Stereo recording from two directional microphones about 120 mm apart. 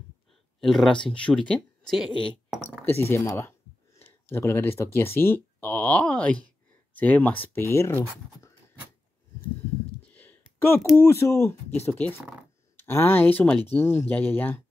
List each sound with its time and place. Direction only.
0.6 s speech: centre (ahead or behind)
2.8 s speech: 15° left (ahead or behind)
10.0 s a sound: 15° left (ahead or behind)
11.0 s speech: 20° left (ahead or behind)